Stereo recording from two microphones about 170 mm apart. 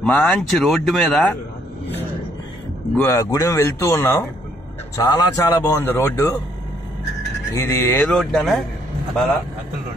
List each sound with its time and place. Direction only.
0.0 s speech: 10° left (ahead or behind)
3.0 s speech: 15° left (ahead or behind)
7.5 s speech: 15° left (ahead or behind)
8.1 s speech: centre (ahead or behind)